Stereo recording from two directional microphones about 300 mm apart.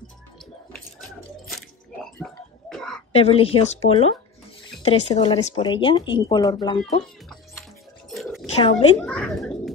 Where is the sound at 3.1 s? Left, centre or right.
Centre.